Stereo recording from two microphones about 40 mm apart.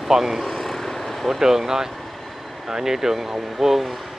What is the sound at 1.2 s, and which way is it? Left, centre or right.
Speech, centre.